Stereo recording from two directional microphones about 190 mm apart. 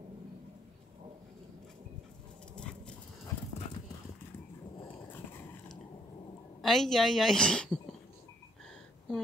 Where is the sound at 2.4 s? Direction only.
5° left (ahead or behind).